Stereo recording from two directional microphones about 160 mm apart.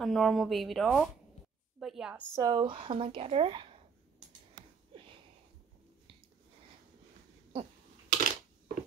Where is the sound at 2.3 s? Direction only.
25° right (ahead or behind).